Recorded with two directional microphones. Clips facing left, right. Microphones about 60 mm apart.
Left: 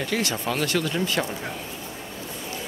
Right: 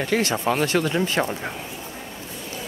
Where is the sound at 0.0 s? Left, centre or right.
Right.